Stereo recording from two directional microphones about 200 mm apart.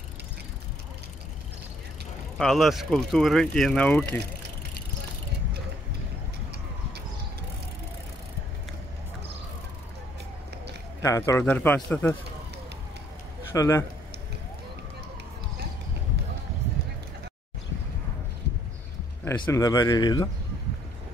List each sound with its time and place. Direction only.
2.3 s speech: centre (ahead or behind)
11.0 s a man's voice: 15° left (ahead or behind)
13.5 s speech: 15° left (ahead or behind)
19.2 s a man's voice: 15° left (ahead or behind)